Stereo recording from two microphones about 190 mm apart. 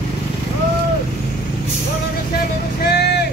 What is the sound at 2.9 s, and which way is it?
Vehicle, 60° left (ahead or behind).